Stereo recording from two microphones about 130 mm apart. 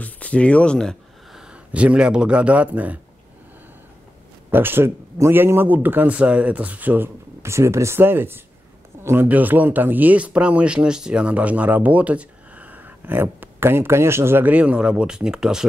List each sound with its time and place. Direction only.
0.0 s speech: 10° left (ahead or behind)
1.5 s speech: 10° right (ahead or behind)
4.5 s speech: 15° right (ahead or behind)